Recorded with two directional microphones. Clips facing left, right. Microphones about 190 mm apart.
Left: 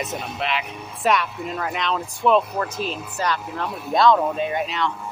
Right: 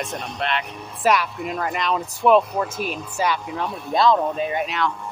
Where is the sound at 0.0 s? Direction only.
5° left (ahead or behind).